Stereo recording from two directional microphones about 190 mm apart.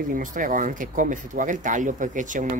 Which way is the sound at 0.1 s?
45° right (ahead or behind).